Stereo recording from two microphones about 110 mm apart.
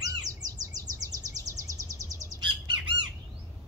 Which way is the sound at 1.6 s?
30° right (ahead or behind).